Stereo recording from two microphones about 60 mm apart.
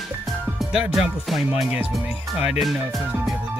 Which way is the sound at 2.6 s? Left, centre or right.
Centre.